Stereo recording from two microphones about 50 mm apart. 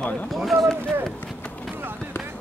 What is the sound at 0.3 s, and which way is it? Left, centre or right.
Speech, centre.